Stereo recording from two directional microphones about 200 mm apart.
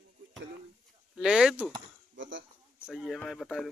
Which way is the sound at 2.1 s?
70° right (ahead or behind).